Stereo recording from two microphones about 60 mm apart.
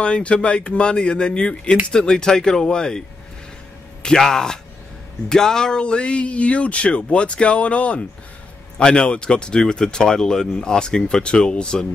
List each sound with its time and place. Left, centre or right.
0.0 s speech: centre
4.0 s speech: centre